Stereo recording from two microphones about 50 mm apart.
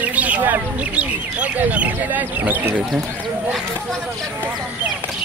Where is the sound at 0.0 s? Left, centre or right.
Right.